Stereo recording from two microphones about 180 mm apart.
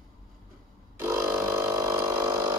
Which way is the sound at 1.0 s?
15° right (ahead or behind).